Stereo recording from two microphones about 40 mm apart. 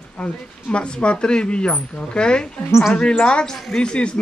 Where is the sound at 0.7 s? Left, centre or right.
Left.